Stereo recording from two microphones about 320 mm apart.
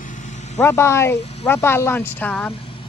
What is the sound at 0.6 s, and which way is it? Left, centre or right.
Speech, centre.